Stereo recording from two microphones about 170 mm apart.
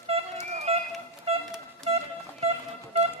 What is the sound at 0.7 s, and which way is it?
Music, 35° right (ahead or behind).